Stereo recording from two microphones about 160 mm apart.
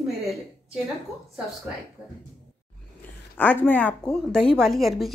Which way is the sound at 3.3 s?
10° left (ahead or behind).